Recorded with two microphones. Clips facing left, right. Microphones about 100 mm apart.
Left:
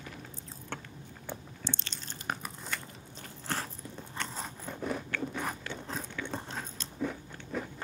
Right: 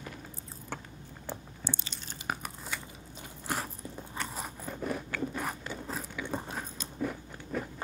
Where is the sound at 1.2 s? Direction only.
10° right (ahead or behind).